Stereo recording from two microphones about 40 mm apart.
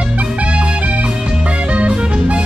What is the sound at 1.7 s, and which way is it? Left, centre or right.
Music, right.